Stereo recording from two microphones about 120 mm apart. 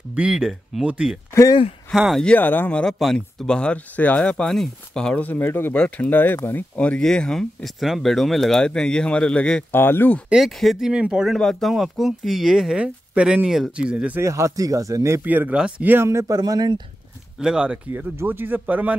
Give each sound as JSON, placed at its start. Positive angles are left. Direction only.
{"t": 0.1, "sound": "speech", "side_deg": -10}
{"t": 1.3, "sound": "speech", "side_deg": 25}
{"t": 1.9, "sound": "speech", "side_deg": 0}
{"t": 2.2, "sound": "speech", "side_deg": 15}
{"t": 9.7, "sound": "speech", "side_deg": 20}
{"t": 10.3, "sound": "speech", "side_deg": 0}
{"t": 14.2, "sound": "speech", "side_deg": -25}
{"t": 15.2, "sound": "speech", "side_deg": -15}
{"t": 16.3, "sound": "speech", "side_deg": -35}
{"t": 17.4, "sound": "speech", "side_deg": -5}